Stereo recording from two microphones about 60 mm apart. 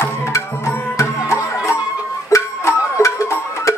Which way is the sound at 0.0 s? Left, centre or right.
Left.